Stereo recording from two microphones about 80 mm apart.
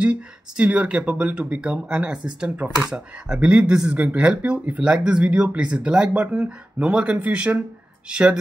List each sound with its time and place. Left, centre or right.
0.0 s speech: centre